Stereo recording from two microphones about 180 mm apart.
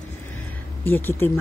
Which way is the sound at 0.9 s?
10° left (ahead or behind).